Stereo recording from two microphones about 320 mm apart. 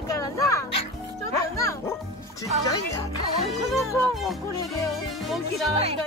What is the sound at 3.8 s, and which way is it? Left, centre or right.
Speech, centre.